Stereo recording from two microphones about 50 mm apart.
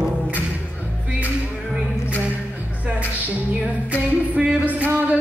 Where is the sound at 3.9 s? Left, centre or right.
Right.